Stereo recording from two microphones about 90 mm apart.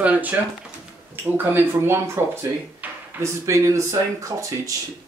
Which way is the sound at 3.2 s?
35° right (ahead or behind).